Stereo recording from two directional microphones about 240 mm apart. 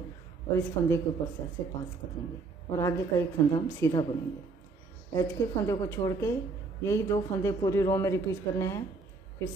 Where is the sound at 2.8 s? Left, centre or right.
Centre.